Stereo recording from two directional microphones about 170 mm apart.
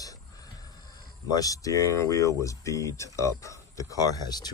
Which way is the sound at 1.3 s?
20° left (ahead or behind).